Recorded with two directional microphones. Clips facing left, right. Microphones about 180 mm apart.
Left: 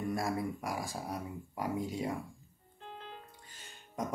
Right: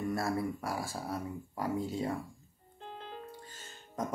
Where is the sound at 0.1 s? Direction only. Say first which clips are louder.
Right 1 dB; 15° left (ahead or behind).